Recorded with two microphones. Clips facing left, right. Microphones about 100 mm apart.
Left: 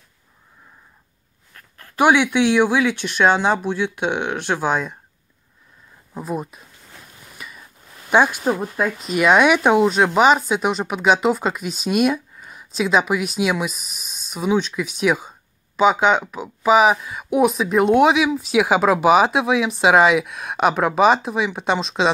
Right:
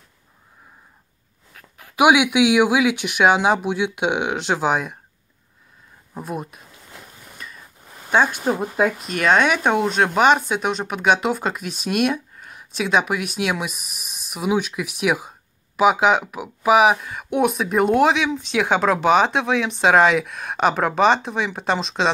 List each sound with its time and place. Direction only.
1.5 s speech: 15° right (ahead or behind)
6.1 s speech: centre (ahead or behind)
7.3 s a sound: 10° left (ahead or behind)
8.1 s speech: 15° left (ahead or behind)
8.5 s speech: 15° right (ahead or behind)
9.1 s speech: 10° left (ahead or behind)